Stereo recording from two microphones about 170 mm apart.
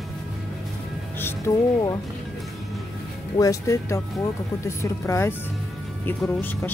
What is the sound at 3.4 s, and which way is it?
Speech, 20° left (ahead or behind).